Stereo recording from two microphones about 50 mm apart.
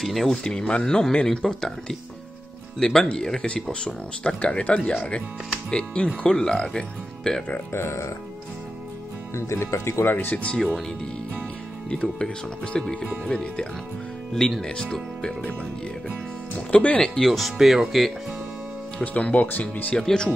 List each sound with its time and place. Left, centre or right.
0.0 s speech: centre
0.4 s speech: centre
9.3 s speech: left
10.0 s speech: left
10.3 s speech: left
11.9 s speech: centre
16.5 s speech: left
17.0 s speech: centre
17.3 s speech: centre
19.1 s speech: left
20.0 s speech: centre